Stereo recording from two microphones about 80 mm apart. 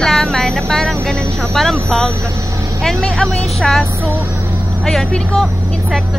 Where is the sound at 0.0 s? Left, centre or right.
Centre.